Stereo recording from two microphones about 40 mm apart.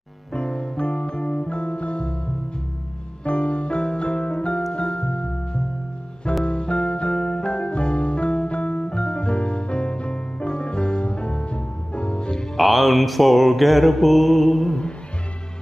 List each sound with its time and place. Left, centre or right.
0.3 s music: left
3.3 s piano: left
4.7 s music: left
7.2 s music: centre
12.5 s mantra: centre